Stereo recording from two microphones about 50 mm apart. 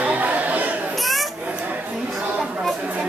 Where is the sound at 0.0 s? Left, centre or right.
Right.